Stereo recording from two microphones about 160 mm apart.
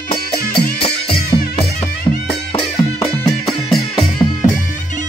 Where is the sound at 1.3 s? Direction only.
25° left (ahead or behind).